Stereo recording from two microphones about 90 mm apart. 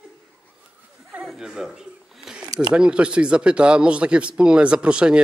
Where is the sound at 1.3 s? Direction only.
5° right (ahead or behind).